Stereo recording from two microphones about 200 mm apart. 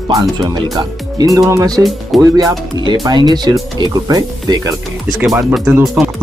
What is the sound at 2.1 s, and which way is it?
Speech, centre (ahead or behind).